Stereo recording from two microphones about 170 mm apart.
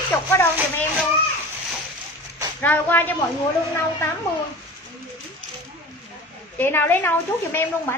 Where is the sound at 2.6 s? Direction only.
10° left (ahead or behind).